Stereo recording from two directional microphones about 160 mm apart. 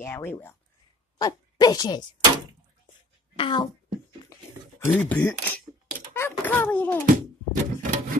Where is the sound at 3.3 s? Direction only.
30° left (ahead or behind).